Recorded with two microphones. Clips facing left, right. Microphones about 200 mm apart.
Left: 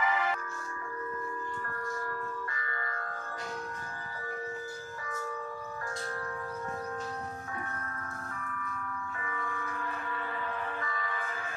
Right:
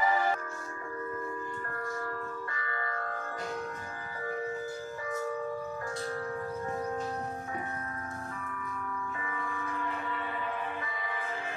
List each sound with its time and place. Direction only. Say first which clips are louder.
0.0 s music: right 3 dB; 35° right (ahead or behind)
10.8 s music: left 1 dB; 20° right (ahead or behind)